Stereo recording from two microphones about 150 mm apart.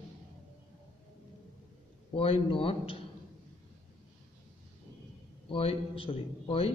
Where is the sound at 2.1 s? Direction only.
40° left (ahead or behind).